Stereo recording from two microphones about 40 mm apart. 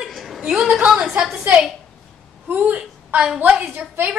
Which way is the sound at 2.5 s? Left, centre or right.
Right.